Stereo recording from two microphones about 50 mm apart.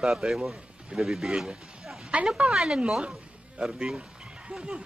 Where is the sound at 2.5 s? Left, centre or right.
Centre.